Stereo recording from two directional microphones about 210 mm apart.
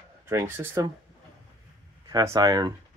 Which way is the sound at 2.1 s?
20° right (ahead or behind).